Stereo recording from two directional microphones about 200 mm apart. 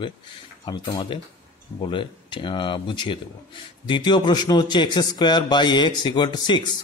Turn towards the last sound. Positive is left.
turn(degrees=20)  # may be behind; listen again after turning